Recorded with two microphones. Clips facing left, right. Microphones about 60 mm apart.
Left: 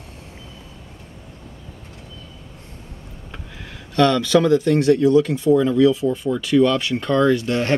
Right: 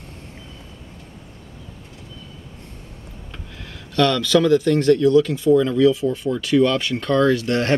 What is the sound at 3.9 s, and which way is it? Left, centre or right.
Speech, left.